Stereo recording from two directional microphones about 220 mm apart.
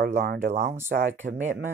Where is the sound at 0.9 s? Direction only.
35° right (ahead or behind).